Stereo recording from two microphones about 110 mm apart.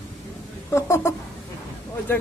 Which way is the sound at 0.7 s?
25° left (ahead or behind).